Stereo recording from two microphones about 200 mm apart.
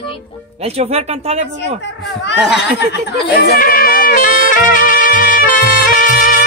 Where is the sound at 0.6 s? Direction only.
30° right (ahead or behind).